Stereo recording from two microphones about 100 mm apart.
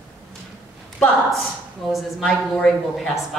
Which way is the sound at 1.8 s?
Centre (ahead or behind).